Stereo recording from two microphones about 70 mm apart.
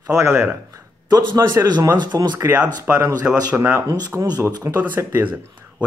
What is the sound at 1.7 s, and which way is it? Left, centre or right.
Speech, right.